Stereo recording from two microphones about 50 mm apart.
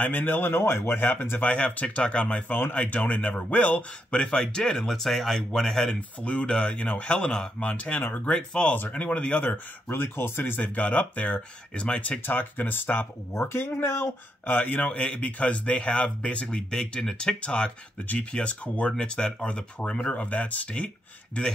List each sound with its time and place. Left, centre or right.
0.0 s speech: left
1.4 s speech: left
4.2 s speech: centre
5.9 s speech: left
8.0 s speech: left
8.4 s speech: centre
9.5 s speech: left
10.6 s speech: left
13.3 s speech: left
14.6 s speech: left
16.4 s speech: centre
20.2 s speech: left